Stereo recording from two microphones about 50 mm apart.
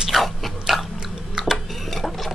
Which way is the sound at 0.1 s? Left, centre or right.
Centre.